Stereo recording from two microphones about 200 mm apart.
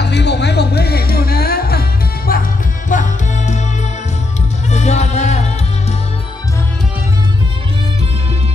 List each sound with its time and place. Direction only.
0.0 s music: 60° left (ahead or behind)
2.9 s music: 40° left (ahead or behind)
4.6 s music: 35° left (ahead or behind)